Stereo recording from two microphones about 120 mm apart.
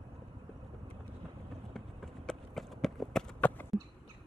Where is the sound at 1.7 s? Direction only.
Centre (ahead or behind).